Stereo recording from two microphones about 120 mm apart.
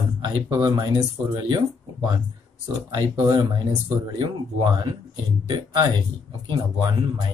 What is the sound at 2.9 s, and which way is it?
Speech, 40° right (ahead or behind).